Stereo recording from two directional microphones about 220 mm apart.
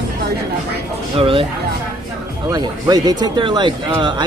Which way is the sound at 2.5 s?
15° right (ahead or behind).